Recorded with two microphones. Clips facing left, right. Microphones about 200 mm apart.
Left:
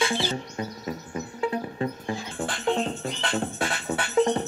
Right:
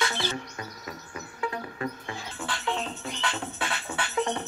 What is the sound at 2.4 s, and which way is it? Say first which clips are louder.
Music: left 6 dB; 50° left (ahead or behind).